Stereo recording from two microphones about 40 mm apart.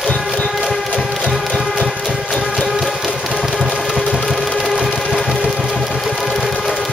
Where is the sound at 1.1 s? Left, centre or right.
Centre.